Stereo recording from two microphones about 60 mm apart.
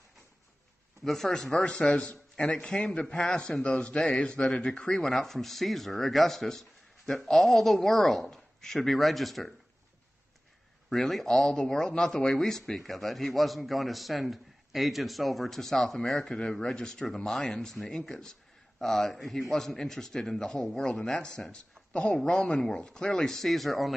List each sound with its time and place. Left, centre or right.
1.0 s a man's voice: centre
10.9 s a man's voice: centre